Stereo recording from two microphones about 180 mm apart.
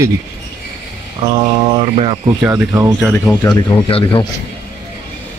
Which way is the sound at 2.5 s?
20° right (ahead or behind).